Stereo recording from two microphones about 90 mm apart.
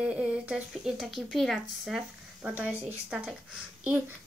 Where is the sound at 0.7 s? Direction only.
Centre (ahead or behind).